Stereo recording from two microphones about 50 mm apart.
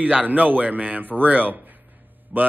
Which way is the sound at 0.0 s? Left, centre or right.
Right.